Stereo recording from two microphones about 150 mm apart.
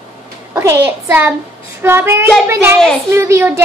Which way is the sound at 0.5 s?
20° right (ahead or behind).